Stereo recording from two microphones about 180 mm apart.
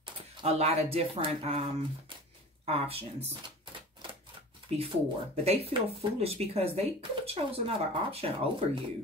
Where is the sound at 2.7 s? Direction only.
30° right (ahead or behind).